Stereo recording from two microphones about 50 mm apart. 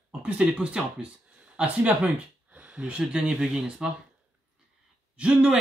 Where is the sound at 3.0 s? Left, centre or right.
Centre.